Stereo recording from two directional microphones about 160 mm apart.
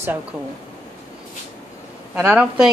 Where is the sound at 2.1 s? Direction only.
10° right (ahead or behind).